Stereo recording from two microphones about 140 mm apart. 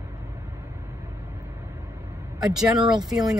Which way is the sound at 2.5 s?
Centre (ahead or behind).